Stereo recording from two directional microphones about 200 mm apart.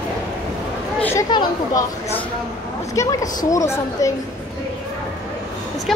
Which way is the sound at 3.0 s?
15° left (ahead or behind).